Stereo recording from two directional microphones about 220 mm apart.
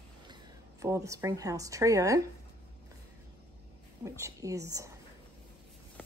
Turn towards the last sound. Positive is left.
turn(degrees=-15)  # may be behind; listen again after turning